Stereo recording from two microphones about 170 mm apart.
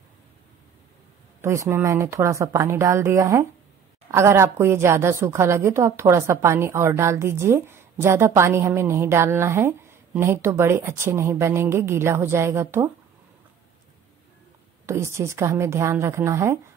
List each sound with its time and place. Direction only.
1.4 s a woman's voice: 15° right (ahead or behind)
14.9 s a woman's voice: 15° right (ahead or behind)